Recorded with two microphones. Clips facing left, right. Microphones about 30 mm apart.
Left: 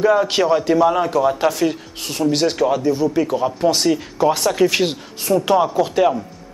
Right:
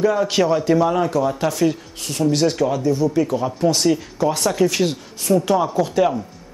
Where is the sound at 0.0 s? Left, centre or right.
Centre.